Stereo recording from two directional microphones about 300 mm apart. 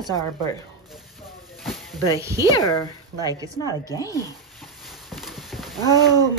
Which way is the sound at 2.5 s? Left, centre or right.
Centre.